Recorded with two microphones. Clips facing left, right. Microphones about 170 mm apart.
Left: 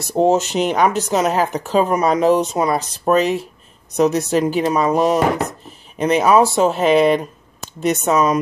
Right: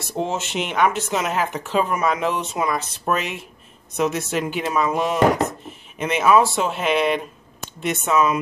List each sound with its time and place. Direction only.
0.0 s speech: 40° left (ahead or behind)